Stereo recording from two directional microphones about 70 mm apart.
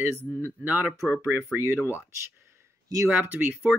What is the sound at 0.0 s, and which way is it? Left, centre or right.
Speech, right.